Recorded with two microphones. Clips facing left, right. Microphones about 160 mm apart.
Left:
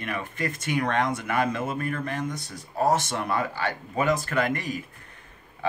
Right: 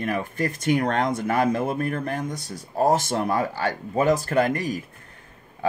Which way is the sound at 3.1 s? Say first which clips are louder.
Right 4 dB; 40° right (ahead or behind).